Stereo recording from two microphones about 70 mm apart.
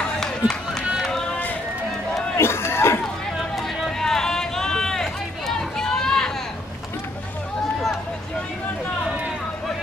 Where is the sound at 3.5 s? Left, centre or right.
Centre.